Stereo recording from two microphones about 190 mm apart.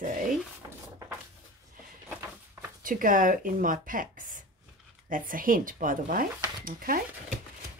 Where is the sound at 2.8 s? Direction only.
45° right (ahead or behind).